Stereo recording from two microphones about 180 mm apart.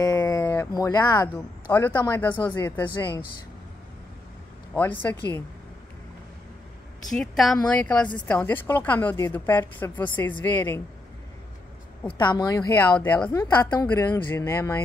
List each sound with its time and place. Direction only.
0.0 s speech: 20° left (ahead or behind)
5.0 s a woman's voice: 10° left (ahead or behind)
7.1 s a woman's voice: centre (ahead or behind)
12.1 s a woman's voice: 25° left (ahead or behind)